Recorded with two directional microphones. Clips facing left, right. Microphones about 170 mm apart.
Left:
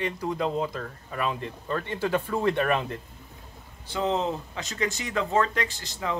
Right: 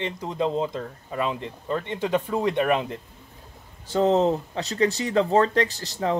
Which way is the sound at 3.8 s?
40° right (ahead or behind).